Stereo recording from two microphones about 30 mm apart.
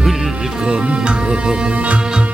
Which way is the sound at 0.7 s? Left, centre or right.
Right.